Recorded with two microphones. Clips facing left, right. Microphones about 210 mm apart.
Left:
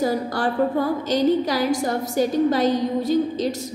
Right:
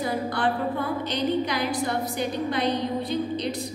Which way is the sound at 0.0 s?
40° left (ahead or behind).